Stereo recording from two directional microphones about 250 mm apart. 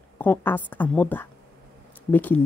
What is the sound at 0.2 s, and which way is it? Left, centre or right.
A woman's voice, centre.